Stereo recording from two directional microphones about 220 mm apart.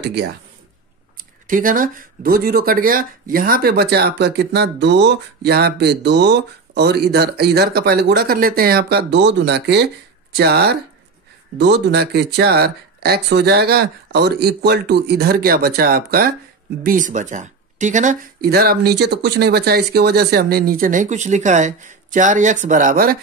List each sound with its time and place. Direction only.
0.0 s speech: 50° right (ahead or behind)
1.1 s speech: 40° right (ahead or behind)